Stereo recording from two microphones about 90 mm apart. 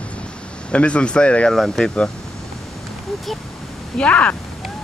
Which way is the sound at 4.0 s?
15° left (ahead or behind).